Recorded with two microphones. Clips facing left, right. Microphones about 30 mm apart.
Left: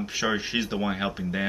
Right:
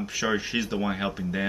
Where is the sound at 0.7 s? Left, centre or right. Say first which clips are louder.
Even; centre.